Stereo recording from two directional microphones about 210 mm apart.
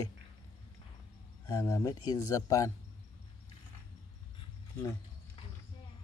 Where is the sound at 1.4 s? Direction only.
15° left (ahead or behind).